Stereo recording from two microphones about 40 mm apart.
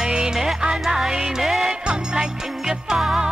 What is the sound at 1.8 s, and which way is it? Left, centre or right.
Music, right.